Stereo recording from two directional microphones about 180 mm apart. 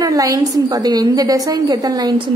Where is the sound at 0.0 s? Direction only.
20° right (ahead or behind).